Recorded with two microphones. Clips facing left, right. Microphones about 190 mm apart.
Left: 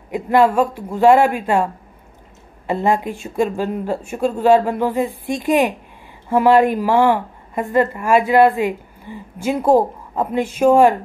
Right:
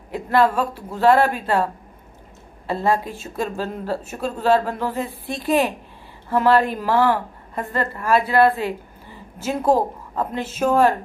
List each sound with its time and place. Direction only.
0.1 s a woman's voice: 15° left (ahead or behind)